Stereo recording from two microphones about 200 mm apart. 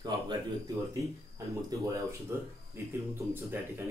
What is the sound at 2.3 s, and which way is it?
Speech, 15° right (ahead or behind).